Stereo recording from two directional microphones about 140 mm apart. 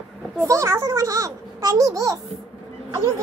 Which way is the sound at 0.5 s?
20° right (ahead or behind).